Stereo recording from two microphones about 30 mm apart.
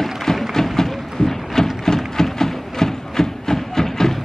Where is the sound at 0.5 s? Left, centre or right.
Centre.